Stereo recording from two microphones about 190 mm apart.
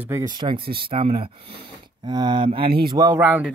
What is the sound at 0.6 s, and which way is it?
Speech, 55° right (ahead or behind).